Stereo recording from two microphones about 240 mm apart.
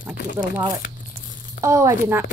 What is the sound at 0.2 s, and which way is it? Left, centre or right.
Speech, left.